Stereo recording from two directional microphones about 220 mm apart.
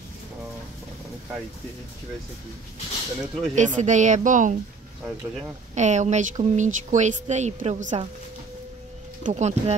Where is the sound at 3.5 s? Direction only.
35° right (ahead or behind).